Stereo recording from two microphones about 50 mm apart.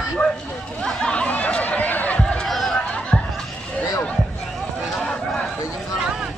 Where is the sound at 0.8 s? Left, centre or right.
Centre.